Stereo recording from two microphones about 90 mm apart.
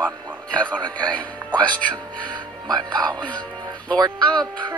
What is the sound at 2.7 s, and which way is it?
Music, 50° right (ahead or behind).